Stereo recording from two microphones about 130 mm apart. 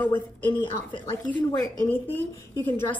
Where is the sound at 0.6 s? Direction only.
40° left (ahead or behind).